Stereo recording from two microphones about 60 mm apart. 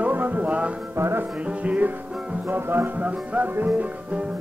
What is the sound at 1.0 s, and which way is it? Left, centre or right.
Music, right.